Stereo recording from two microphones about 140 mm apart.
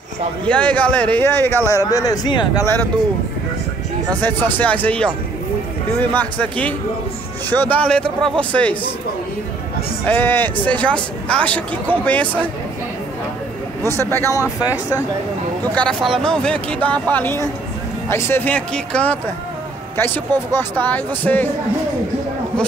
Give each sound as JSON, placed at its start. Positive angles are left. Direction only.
{"t": 0.5, "sound": "speech", "side_deg": 10}
{"t": 4.2, "sound": "speech", "side_deg": 15}
{"t": 10.0, "sound": "speech", "side_deg": 15}
{"t": 13.9, "sound": "speech", "side_deg": 20}
{"t": 15.7, "sound": "speech", "side_deg": 10}